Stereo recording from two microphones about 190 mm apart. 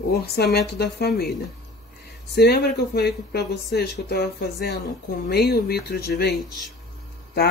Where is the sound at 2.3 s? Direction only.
60° left (ahead or behind).